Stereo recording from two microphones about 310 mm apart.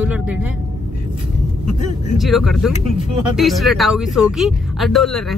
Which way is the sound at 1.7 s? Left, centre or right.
Right.